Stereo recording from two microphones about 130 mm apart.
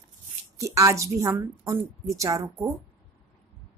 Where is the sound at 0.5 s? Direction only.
25° right (ahead or behind).